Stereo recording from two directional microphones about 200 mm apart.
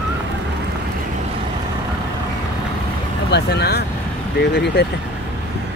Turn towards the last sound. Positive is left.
turn(degrees=55)  # may be behind; listen again after turning